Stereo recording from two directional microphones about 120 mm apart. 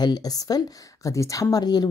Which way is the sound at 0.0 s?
30° left (ahead or behind).